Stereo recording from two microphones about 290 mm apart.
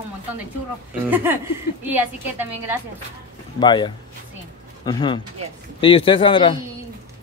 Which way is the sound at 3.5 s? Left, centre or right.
Centre.